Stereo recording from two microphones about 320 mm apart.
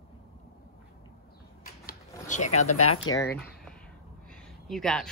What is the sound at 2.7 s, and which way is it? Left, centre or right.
Speech, left.